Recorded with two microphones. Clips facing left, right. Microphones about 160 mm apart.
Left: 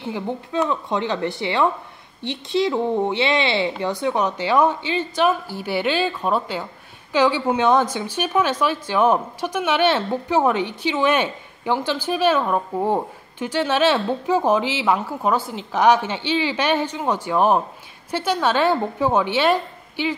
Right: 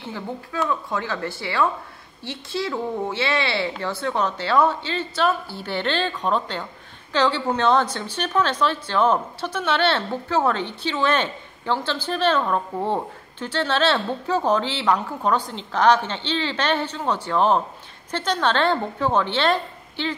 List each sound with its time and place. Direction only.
0.1 s a woman's voice: 20° left (ahead or behind)